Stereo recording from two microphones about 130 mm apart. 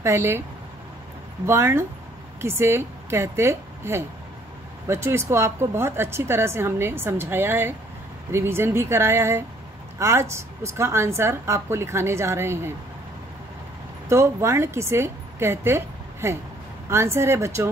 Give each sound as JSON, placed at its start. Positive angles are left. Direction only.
{"t": 0.0, "sound": "a woman's voice", "side_deg": -20}
{"t": 1.4, "sound": "a woman's voice", "side_deg": -20}
{"t": 14.0, "sound": "a woman's voice", "side_deg": -20}